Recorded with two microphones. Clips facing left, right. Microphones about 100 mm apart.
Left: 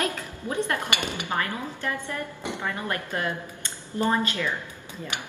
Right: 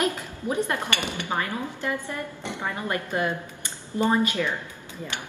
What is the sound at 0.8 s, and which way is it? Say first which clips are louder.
Speech: even; 15° left (ahead or behind).